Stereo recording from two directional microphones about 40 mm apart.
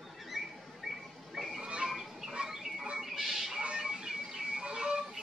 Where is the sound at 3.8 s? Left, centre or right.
Centre.